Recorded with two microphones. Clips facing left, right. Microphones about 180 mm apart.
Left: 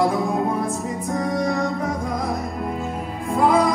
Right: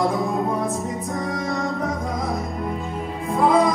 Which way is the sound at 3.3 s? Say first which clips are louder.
Even; centre (ahead or behind).